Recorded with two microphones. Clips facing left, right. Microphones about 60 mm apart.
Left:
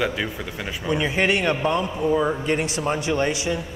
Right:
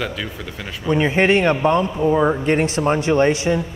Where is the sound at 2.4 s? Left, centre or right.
Right.